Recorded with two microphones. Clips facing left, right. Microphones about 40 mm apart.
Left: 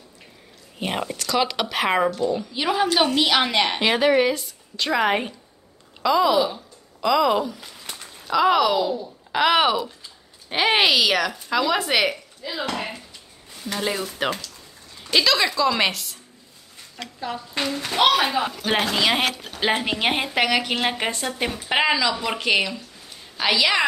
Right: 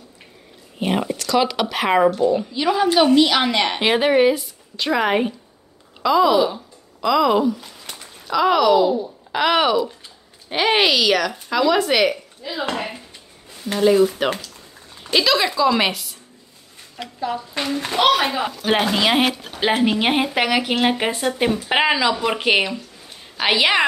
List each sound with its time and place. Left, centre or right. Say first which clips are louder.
0.7 s speech: right 5 dB; centre
2.1 s speech: right 5 dB; centre
2.5 s a woman's voice: right 4 dB; centre
13.7 s a woman's voice: right 11 dB; centre
15.1 s a woman's voice: right 2 dB; centre
17.6 s a child's voice: right 3 dB; right
17.9 s a woman's voice: right 1 dB; centre
18.8 s a woman's voice: right 3 dB; centre